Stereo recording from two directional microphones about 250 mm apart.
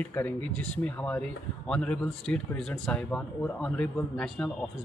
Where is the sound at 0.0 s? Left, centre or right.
Centre.